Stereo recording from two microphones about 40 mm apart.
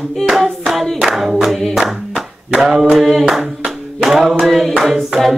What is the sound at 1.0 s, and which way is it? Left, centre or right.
Singing, centre.